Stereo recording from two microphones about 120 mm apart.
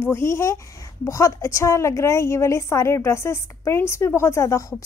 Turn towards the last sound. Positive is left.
turn(degrees=25)  # may be behind; listen again after turning